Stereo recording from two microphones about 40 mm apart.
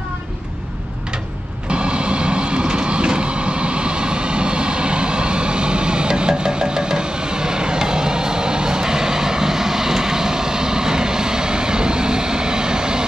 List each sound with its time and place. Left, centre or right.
1.7 s vehicle: right